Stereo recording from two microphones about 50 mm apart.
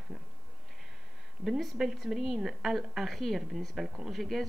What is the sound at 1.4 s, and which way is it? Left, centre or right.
A woman's voice, centre.